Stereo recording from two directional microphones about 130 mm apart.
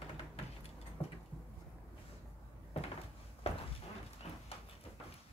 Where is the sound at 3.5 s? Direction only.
55° left (ahead or behind).